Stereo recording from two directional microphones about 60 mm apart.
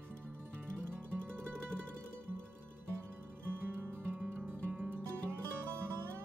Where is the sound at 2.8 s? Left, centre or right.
Right.